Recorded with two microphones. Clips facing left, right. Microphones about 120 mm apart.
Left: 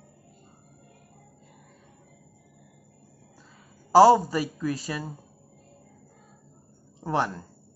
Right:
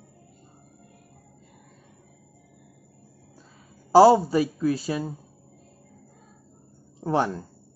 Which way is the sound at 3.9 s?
15° right (ahead or behind).